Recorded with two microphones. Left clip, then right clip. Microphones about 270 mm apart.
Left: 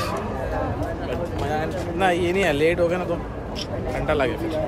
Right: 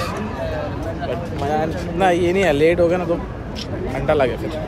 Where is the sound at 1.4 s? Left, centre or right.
Centre.